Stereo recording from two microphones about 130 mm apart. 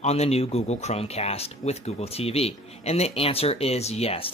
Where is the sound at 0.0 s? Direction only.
55° left (ahead or behind).